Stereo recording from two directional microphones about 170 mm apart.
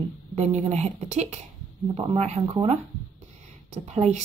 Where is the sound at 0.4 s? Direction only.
40° right (ahead or behind).